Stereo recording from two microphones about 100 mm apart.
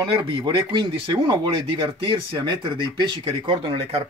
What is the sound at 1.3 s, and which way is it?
Speech, 50° right (ahead or behind).